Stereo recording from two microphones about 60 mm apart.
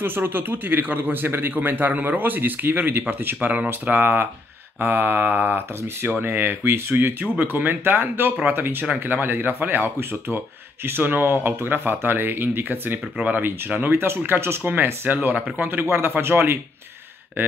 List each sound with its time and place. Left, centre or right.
0.0 s a man's voice: right
7.3 s a man's voice: right
13.2 s speech: right
13.7 s a man's voice: right